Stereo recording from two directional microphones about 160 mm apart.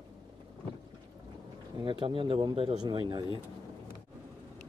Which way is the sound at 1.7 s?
30° right (ahead or behind).